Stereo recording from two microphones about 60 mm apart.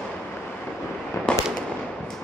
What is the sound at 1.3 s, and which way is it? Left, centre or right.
Fireworks, centre.